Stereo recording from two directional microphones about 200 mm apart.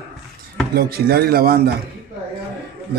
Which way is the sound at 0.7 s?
50° right (ahead or behind).